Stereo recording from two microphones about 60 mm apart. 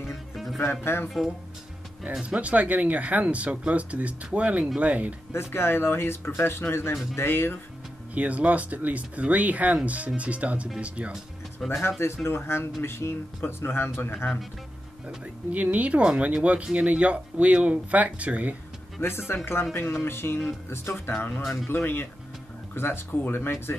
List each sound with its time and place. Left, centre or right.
0.1 s music: centre
0.6 s speech: left
1.0 s speech: centre
2.2 s speech: right
5.3 s speech: left
8.1 s speech: right
11.6 s speech: centre
12.0 s speech: left
15.5 s speech: right
18.9 s speech: left
21.4 s speech: centre
21.6 s speech: left